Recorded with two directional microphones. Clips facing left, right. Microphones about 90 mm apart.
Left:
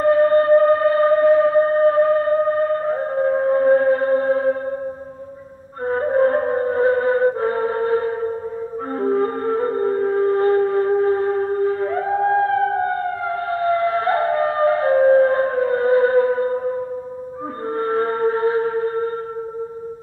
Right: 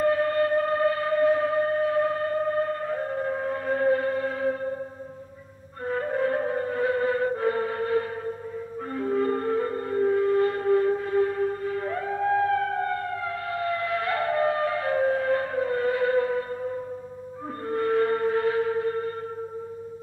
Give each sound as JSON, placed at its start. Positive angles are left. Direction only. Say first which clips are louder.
{"t": 0.0, "sound": "music", "louder": "left 8 dB", "side_deg": 35}
{"t": 5.9, "sound": "music", "louder": "left 9 dB", "side_deg": 40}